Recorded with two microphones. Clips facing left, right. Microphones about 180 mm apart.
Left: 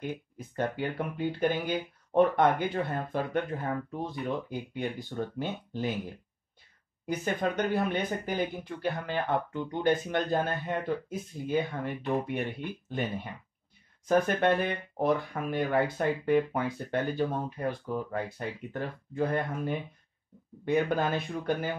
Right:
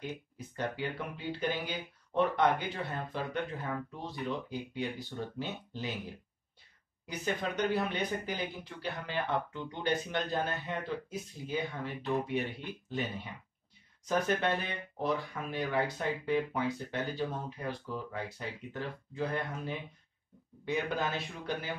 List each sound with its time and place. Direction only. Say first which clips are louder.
0.0 s speech: left 4 dB; 50° left (ahead or behind)
7.1 s speech: left 5 dB; 50° left (ahead or behind)